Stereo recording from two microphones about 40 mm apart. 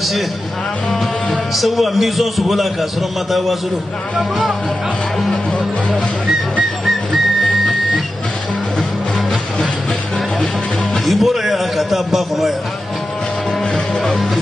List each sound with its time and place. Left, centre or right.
1.3 s a man's voice: centre
6.9 s music: centre
11.1 s a man's voice: centre
14.0 s a man's voice: centre